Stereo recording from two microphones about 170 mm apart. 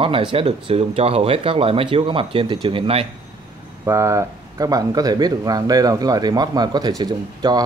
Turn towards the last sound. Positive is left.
turn(degrees=-25)  # may be behind; listen again after turning